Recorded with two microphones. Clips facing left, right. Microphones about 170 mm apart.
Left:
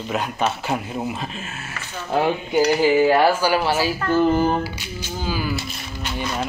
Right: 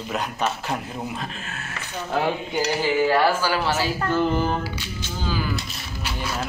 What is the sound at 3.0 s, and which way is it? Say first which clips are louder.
Speech: left 3 dB; 15° left (ahead or behind).